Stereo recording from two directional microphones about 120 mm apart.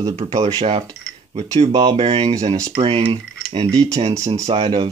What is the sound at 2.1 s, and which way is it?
Speech, 60° right (ahead or behind).